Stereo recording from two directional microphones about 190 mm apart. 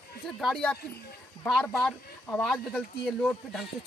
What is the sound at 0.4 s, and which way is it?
Speech, centre (ahead or behind).